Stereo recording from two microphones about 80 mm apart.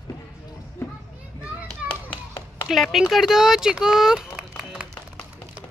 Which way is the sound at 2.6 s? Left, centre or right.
Centre.